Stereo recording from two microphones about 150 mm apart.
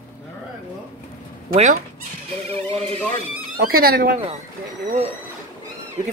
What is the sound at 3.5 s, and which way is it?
Speech, 80° right.